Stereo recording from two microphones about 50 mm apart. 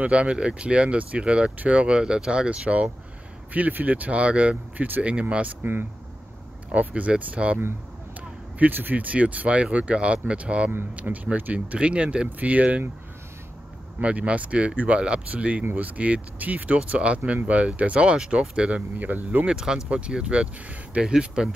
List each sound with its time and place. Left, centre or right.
0.0 s speech: right
6.7 s speech: right
13.9 s speech: right
17.9 s speech: centre
18.9 s speech: right
19.4 s speech: centre